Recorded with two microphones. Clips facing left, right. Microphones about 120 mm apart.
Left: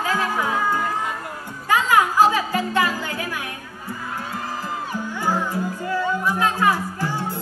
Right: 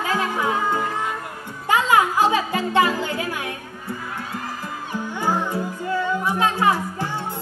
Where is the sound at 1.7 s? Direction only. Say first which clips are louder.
Even; 20° right (ahead or behind).